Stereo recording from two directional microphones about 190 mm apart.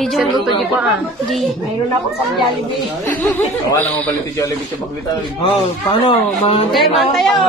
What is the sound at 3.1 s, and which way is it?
Speech, 10° left (ahead or behind).